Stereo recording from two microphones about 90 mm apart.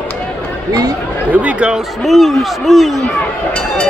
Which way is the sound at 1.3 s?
15° right (ahead or behind).